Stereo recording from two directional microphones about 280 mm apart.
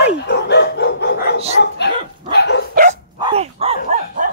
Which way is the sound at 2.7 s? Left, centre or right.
Right.